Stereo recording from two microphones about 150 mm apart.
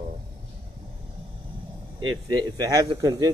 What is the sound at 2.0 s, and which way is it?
Speech, 25° right (ahead or behind).